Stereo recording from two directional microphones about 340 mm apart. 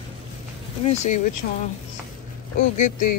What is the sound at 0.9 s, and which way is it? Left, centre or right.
Speech, left.